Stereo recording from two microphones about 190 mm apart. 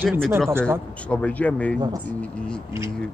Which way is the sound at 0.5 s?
10° right (ahead or behind).